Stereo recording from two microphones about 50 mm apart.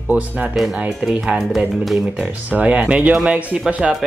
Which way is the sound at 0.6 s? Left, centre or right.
Centre.